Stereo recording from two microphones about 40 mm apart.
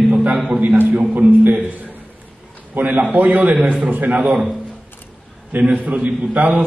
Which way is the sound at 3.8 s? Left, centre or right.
Right.